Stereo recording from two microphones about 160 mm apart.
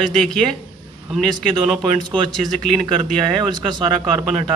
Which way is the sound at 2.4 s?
Centre (ahead or behind).